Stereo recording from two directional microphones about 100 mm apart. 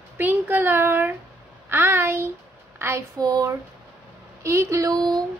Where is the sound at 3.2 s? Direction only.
35° right (ahead or behind).